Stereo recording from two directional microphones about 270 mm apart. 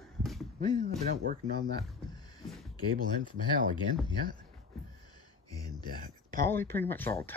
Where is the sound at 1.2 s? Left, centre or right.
Right.